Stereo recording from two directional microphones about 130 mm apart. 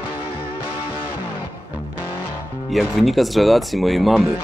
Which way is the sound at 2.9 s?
Centre (ahead or behind).